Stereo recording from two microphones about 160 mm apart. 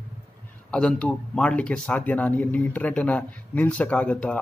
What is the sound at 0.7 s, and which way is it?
Speech, 5° left (ahead or behind).